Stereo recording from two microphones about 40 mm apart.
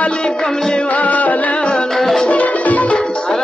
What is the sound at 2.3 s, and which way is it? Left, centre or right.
Music, left.